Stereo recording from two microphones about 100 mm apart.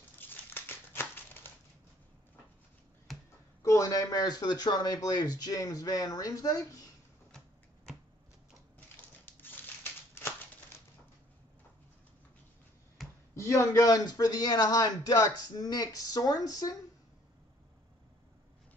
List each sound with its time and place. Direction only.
0.2 s crumpling: 20° left (ahead or behind)
3.1 s a sound: centre (ahead or behind)
3.6 s speech: 35° left (ahead or behind)
8.7 s crushing: 20° left (ahead or behind)
13.0 s a sound: centre (ahead or behind)
13.5 s speech: 30° left (ahead or behind)